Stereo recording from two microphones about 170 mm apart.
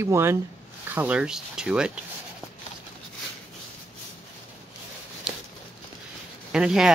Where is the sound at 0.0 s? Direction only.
15° right (ahead or behind).